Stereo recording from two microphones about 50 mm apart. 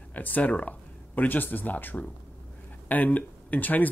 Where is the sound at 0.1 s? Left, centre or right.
Left.